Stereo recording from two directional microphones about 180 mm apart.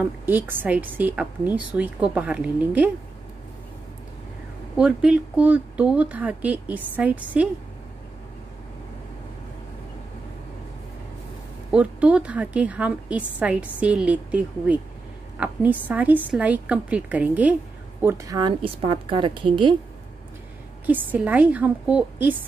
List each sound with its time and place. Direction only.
0.0 s a woman's voice: 10° right (ahead or behind)
4.7 s a woman's voice: 5° right (ahead or behind)
11.7 s a woman's voice: 5° right (ahead or behind); by 19.7 s 25° right (ahead or behind)
20.8 s a woman's voice: 10° right (ahead or behind)